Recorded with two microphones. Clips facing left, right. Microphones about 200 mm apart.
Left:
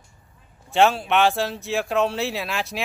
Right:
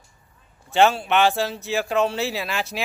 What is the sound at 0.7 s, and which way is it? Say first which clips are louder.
Speech: even; centre (ahead or behind).